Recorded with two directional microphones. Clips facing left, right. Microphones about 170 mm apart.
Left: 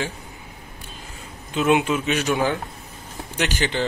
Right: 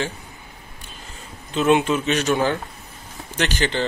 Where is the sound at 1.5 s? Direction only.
10° left (ahead or behind).